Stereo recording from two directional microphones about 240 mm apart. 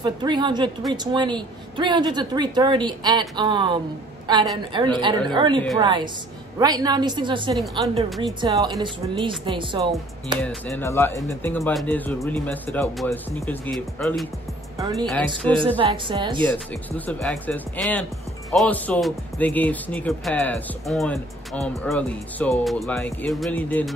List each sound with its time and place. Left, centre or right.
0.0 s a woman's voice: centre
10.4 s speech: centre
14.8 s a woman's voice: centre
16.4 s speech: centre